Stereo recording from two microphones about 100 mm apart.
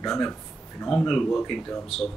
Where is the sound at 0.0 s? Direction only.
5° left (ahead or behind).